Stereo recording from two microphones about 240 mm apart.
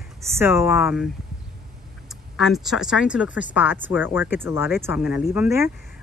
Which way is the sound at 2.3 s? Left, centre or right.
Centre.